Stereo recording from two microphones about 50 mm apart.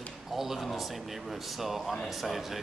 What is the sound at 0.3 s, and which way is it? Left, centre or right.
A man's voice, centre.